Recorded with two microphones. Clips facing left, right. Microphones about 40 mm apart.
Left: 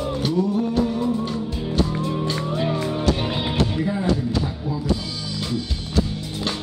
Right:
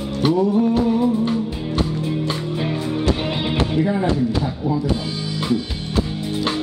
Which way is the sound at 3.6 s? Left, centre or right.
Right.